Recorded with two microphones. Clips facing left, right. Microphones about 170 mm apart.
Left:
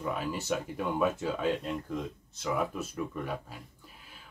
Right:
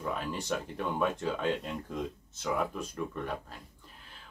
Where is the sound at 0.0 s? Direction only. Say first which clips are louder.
Left 1 dB; 5° left (ahead or behind).